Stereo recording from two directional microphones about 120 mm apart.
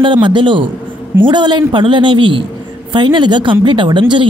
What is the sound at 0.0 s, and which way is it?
A woman's voice, 40° right (ahead or behind).